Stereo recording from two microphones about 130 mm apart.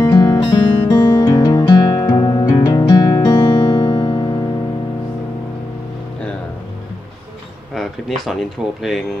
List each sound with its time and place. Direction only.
0.0 s music: 30° left (ahead or behind)
7.7 s speech: centre (ahead or behind)